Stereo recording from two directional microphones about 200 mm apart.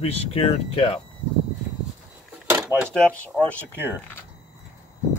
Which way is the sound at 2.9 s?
5° left (ahead or behind).